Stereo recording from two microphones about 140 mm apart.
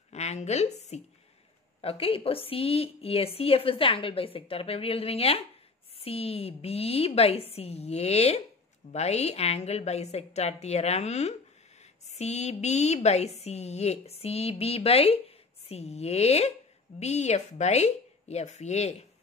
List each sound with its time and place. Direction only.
0.1 s a woman's voice: 50° left (ahead or behind)